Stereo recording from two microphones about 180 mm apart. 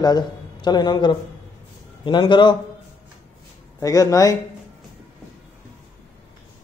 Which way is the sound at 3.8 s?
20° left (ahead or behind).